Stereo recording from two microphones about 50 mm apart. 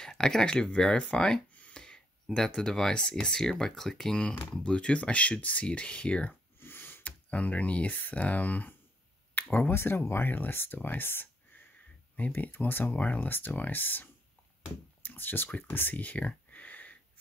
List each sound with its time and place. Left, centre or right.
0.0 s speech: centre
1.5 s a sound: left
2.3 s speech: centre
6.6 s snort: left
7.0 s speech: left
9.3 s a sound: left
9.7 s speech: left
15.0 s speech: left
16.3 s a sound: left